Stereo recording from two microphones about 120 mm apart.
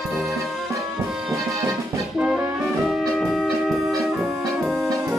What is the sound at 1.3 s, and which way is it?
Music, 25° right (ahead or behind).